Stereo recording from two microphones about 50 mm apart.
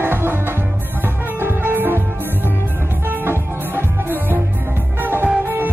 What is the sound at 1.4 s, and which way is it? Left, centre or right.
Music, right.